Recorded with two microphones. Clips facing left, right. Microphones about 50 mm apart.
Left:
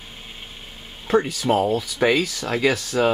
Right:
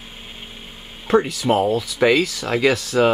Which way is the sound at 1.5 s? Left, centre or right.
Right.